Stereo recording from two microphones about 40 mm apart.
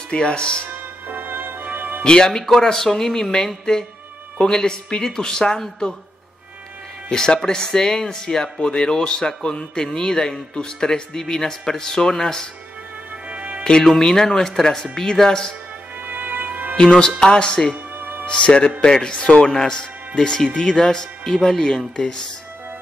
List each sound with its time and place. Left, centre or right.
0.1 s speech: left
0.7 s music: right
2.0 s speech: centre
7.1 s speech: centre
13.3 s music: right
13.9 s speech: centre
16.1 s music: right
16.7 s speech: centre
17.9 s music: right
18.2 s speech: left